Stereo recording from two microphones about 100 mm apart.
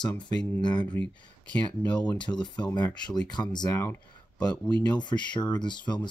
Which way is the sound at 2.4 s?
45° left (ahead or behind).